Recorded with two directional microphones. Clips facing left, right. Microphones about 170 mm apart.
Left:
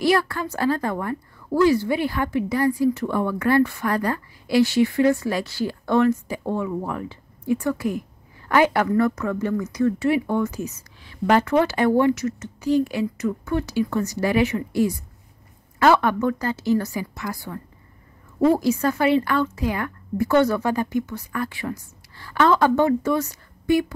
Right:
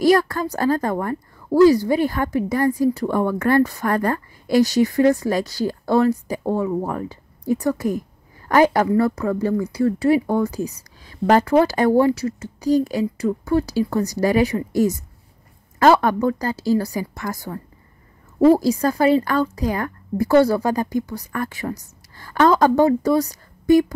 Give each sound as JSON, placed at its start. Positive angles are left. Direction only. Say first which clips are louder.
{"t": 0.0, "sound": "a woman's voice", "louder": "right 4 dB", "side_deg": -40}